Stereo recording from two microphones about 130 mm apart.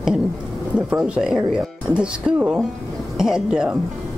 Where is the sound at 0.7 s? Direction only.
10° right (ahead or behind).